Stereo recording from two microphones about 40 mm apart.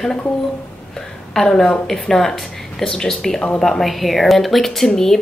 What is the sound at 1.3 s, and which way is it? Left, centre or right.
A woman's voice, centre.